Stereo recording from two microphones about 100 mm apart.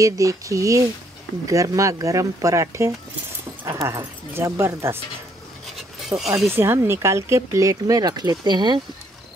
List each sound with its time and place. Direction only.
0.0 s speech: 35° right (ahead or behind)
5.8 s a sound: centre (ahead or behind)
6.5 s speech: 25° right (ahead or behind); by 8.8 s 45° right (ahead or behind)